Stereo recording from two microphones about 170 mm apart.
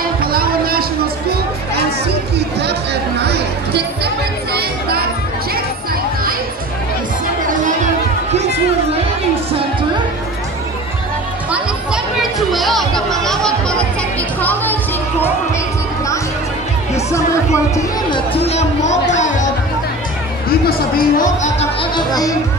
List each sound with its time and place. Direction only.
0.2 s a sound: 60° right (ahead or behind)
2.3 s music: 80° right
7.4 s music: 45° right (ahead or behind)
11.5 s music: 5° right (ahead or behind)
18.1 s chatter: 35° left (ahead or behind)
19.1 s music: 45° left (ahead or behind)
20.4 s music: 60° left (ahead or behind)
21.9 s speech: 20° left (ahead or behind)